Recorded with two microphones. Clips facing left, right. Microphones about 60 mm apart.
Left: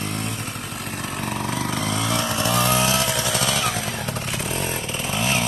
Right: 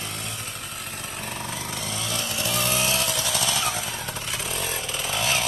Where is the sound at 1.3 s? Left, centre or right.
Left.